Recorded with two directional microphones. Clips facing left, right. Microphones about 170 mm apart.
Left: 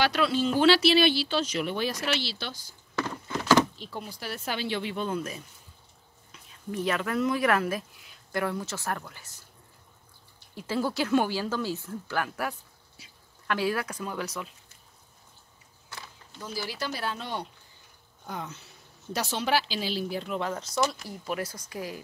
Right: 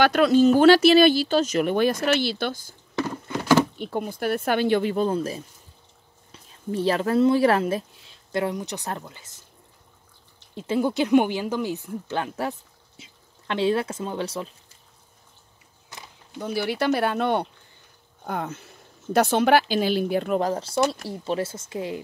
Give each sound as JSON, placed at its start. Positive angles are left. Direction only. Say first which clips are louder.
{"t": 0.0, "sound": "speech", "louder": "right 9 dB", "side_deg": -50}
{"t": 3.7, "sound": "speech", "louder": "right 10 dB", "side_deg": -55}
{"t": 10.5, "sound": "speech", "louder": "right 6 dB", "side_deg": -20}
{"t": 15.9, "sound": "a sound", "louder": "right 1 dB", "side_deg": -15}
{"t": 16.3, "sound": "speech", "louder": "right 9 dB", "side_deg": -60}
{"t": 20.3, "sound": "speech", "louder": "right 3 dB", "side_deg": -35}